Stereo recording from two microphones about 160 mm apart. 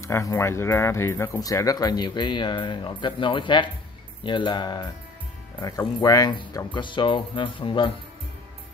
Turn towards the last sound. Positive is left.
turn(degrees=35)  # may be behind; listen again after turning